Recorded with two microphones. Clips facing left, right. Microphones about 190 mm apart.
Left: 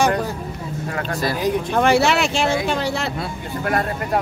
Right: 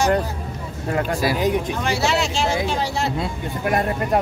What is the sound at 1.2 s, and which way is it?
Speech, 15° right (ahead or behind).